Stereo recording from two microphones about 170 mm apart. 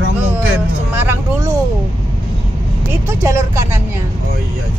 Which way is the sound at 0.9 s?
10° right (ahead or behind).